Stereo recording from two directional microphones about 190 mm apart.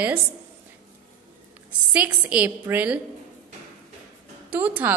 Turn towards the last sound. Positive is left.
turn(degrees=-10)  # may be behind; listen again after turning